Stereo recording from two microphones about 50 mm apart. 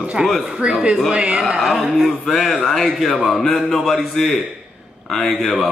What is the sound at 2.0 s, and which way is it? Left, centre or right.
A man's voice, centre.